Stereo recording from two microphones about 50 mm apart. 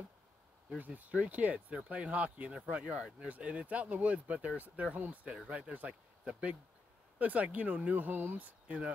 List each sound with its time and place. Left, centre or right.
0.7 s speech: right
7.2 s speech: right